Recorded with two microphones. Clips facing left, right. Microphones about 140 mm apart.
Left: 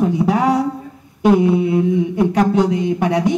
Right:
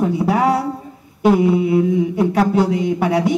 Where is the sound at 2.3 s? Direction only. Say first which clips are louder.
Left 1 dB; 5° right (ahead or behind).